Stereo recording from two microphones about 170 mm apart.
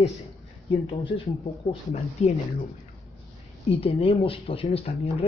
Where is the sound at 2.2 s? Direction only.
40° left (ahead or behind).